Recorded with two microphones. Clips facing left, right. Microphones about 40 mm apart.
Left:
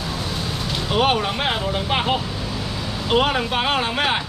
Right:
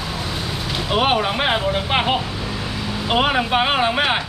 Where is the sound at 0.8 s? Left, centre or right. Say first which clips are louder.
Right 1 dB; centre.